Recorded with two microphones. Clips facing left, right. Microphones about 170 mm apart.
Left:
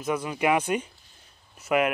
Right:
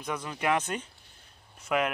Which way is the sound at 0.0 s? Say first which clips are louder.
Left 6 dB; 10° left (ahead or behind).